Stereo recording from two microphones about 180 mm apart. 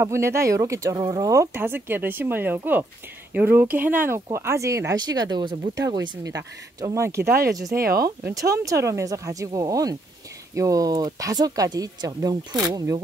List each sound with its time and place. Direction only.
0.0 s speech: 15° right (ahead or behind)
7.7 s speech: 55° right (ahead or behind)
8.4 s speech: 20° right (ahead or behind)